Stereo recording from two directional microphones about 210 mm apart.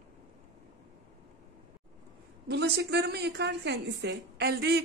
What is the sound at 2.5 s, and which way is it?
A woman's voice, 55° right (ahead or behind).